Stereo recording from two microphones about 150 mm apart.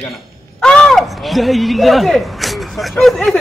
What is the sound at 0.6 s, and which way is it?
Speech, 5° left (ahead or behind).